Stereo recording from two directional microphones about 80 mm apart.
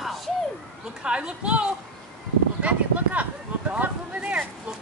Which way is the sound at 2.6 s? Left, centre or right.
Centre.